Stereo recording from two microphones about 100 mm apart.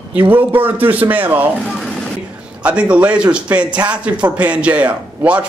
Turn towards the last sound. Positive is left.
turn(degrees=-15)  # may be behind; listen again after turning